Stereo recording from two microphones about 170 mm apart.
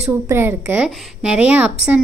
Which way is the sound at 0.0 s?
10° right (ahead or behind).